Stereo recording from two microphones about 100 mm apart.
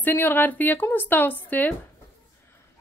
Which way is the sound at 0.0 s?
20° left (ahead or behind).